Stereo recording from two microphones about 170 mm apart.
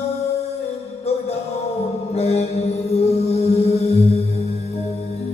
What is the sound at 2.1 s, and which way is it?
Mantra, 40° left (ahead or behind).